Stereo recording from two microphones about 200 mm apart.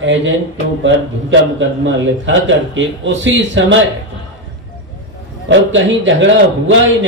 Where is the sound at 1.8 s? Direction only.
70° right (ahead or behind).